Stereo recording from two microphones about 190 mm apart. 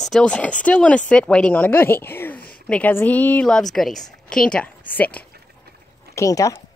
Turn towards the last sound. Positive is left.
turn(degrees=15)  # may be behind; listen again after turning